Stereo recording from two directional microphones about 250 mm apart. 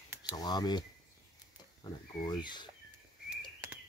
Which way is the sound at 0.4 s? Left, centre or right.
Centre.